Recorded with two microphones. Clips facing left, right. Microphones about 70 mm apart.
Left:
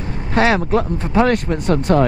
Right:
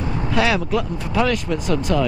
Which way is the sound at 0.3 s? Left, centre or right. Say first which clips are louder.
Left 4 dB; left.